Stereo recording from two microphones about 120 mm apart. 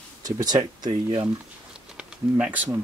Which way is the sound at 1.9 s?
10° right (ahead or behind).